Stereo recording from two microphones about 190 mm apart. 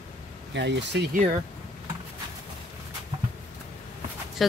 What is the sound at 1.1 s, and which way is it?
Speech, 40° right (ahead or behind).